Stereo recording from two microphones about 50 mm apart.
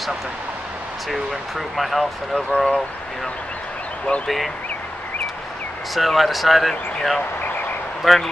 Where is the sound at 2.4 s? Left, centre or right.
Left.